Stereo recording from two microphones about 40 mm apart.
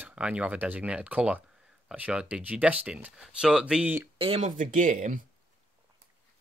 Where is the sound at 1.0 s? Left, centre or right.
Right.